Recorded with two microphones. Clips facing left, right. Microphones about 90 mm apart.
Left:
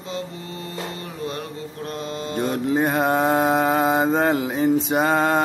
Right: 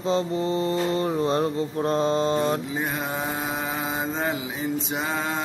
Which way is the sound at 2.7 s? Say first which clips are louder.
Left 9 dB; 50° left (ahead or behind).